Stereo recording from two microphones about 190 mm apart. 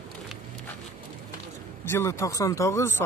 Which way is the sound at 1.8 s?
15° left (ahead or behind).